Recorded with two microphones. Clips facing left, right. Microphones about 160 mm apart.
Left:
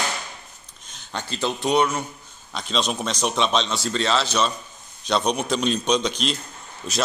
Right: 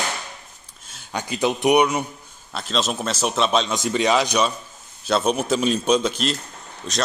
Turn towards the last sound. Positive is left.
turn(degrees=5)  # may be behind; listen again after turning